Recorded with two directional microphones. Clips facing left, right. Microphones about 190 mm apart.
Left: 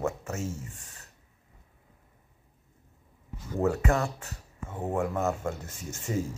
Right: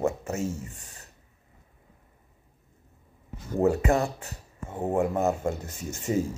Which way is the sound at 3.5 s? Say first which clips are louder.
Right 4 dB; 15° right (ahead or behind).